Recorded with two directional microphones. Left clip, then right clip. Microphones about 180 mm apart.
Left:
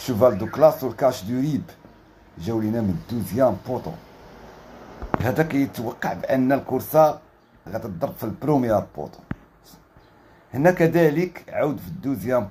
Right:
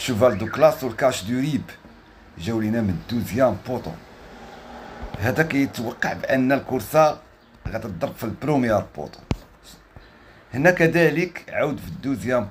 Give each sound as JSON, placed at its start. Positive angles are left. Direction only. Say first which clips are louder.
{"t": 0.0, "sound": "speech", "louder": "even", "side_deg": 0}
{"t": 5.2, "sound": "speech", "louder": "right 2 dB", "side_deg": 0}
{"t": 10.5, "sound": "speech", "louder": "right 1 dB", "side_deg": 0}